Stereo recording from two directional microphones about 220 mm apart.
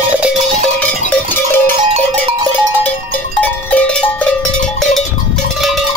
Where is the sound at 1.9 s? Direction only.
20° right (ahead or behind).